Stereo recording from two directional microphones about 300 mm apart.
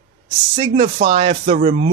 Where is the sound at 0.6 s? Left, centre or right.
Centre.